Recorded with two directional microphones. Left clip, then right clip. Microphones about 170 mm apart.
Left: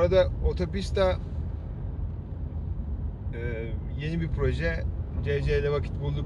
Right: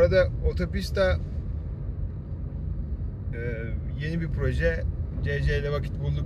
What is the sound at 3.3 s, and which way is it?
Speech, 20° right (ahead or behind).